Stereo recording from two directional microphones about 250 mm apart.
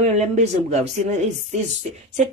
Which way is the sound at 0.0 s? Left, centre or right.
Right.